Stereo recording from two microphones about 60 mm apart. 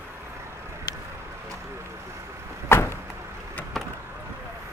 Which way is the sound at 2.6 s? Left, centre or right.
Left.